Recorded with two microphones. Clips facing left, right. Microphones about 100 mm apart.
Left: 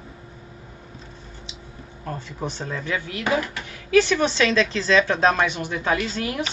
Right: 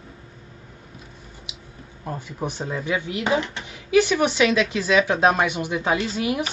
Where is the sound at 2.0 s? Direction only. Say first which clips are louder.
Right 1 dB; 15° right (ahead or behind).